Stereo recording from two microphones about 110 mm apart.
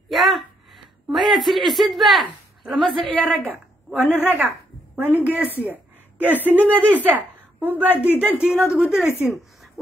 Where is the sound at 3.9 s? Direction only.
15° right (ahead or behind).